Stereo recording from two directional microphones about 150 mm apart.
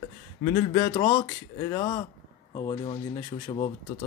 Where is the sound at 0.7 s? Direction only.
35° left (ahead or behind).